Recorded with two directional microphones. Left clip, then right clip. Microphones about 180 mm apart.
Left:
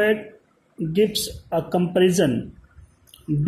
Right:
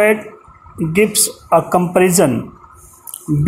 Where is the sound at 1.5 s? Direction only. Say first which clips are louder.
Right 11 dB; 35° right (ahead or behind).